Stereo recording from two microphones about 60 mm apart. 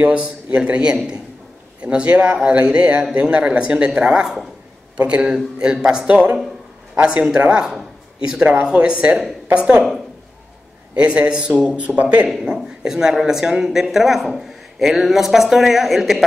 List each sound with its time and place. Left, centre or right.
0.0 s a man's voice: right
11.0 s a man's voice: centre
12.3 s speech: centre